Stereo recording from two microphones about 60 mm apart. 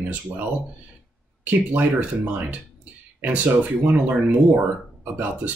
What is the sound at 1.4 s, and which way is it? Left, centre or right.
Speech, right.